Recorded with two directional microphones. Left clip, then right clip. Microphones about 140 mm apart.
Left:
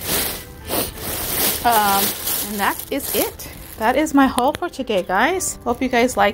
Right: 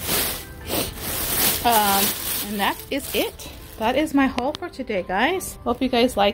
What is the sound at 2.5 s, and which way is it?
Speech, 20° right (ahead or behind).